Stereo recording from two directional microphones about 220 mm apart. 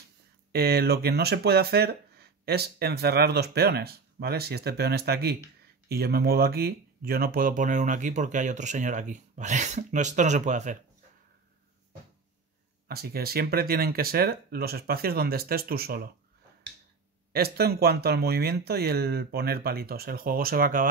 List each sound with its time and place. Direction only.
0.5 s speech: 45° right (ahead or behind)
12.8 s speech: 45° right (ahead or behind)
17.3 s speech: 45° right (ahead or behind)